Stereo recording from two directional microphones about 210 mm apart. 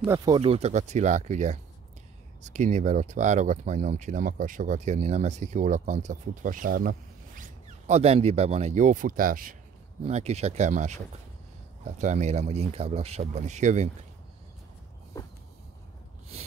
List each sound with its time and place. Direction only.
0.0 s speech: 15° right (ahead or behind); by 9.6 s 40° right (ahead or behind)
10.0 s speech: 30° right (ahead or behind)
15.2 s a sound: 15° left (ahead or behind)